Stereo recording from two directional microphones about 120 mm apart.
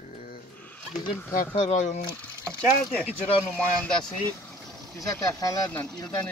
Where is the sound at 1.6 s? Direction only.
90° left.